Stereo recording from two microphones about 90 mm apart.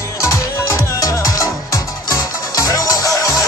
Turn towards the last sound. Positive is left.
turn(degrees=40)  # may be behind; listen again after turning